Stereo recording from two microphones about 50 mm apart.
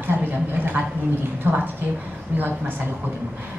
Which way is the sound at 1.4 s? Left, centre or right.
Right.